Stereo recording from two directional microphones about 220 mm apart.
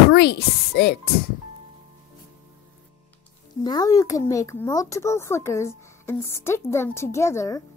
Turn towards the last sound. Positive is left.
turn(degrees=15)  # may be behind; listen again after turning